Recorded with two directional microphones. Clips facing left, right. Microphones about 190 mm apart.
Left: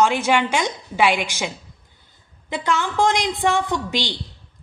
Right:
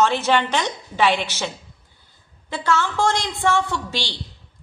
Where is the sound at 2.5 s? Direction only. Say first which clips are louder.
Even; 15° left (ahead or behind).